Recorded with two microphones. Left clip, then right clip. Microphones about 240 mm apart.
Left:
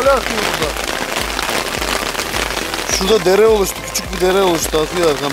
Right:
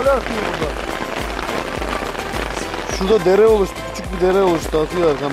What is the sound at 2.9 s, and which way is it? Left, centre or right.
Speech, centre.